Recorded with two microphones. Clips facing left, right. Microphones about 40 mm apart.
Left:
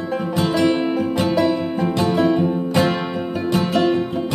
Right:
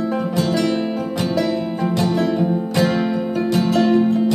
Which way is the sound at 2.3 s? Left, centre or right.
Centre.